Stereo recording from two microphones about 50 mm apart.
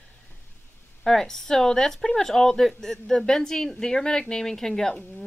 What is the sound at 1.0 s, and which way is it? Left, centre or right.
Speech, centre.